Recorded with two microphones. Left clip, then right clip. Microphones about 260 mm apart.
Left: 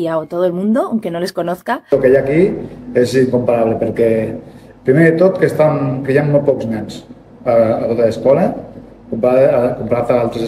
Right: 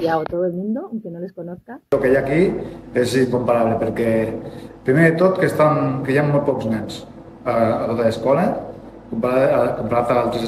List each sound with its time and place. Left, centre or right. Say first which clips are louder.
0.0 s speech: left 3 dB; centre
1.9 s a man's voice: left 5 dB; centre